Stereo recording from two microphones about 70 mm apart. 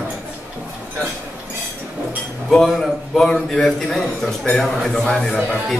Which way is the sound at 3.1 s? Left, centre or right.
Centre.